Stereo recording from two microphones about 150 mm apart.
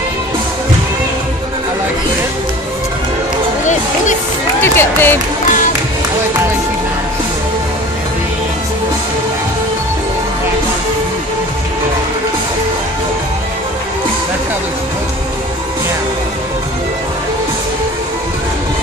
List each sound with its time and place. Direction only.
4.6 s speech: 15° left (ahead or behind)